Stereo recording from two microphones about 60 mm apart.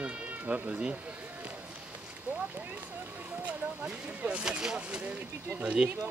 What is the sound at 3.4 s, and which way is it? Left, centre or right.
Speech, right.